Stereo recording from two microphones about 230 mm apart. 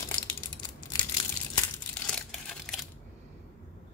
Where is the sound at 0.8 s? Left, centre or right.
Centre.